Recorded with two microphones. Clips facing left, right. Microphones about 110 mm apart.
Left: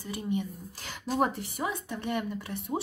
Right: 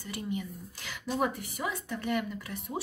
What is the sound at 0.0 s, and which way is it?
Speech, 20° left (ahead or behind).